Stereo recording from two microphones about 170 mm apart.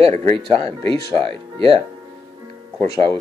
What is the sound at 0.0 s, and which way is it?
Speech, 35° right (ahead or behind).